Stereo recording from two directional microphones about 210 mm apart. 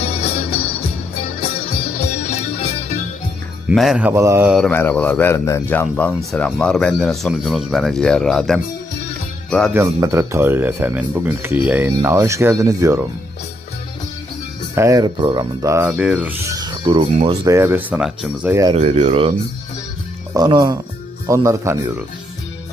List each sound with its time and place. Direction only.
0.0 s music: 25° left (ahead or behind)
2.0 s music: 30° left (ahead or behind)
3.6 s speech: centre (ahead or behind)
4.6 s speech: 5° left (ahead or behind)
9.8 s speech: 15° right (ahead or behind)
14.8 s speech: 15° right (ahead or behind)
17.5 s speech: 10° right (ahead or behind)
18.5 s speech: 15° right (ahead or behind)
18.8 s speech: 30° right (ahead or behind)
20.3 s speech: 20° right (ahead or behind)